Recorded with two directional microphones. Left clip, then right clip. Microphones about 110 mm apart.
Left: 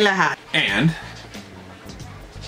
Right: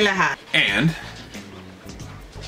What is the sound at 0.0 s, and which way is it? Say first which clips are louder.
Speech: left 1 dB; 15° left (ahead or behind).